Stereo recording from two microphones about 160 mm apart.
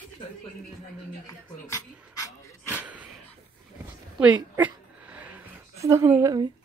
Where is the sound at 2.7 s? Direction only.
10° right (ahead or behind).